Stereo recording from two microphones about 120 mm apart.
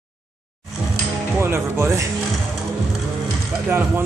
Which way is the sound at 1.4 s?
20° right (ahead or behind).